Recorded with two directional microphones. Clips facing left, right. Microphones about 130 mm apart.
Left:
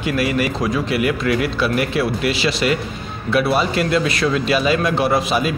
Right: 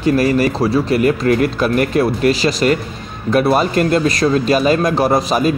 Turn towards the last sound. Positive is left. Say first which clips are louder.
# right 4 dB
turn(degrees=-40)  # may be behind; listen again after turning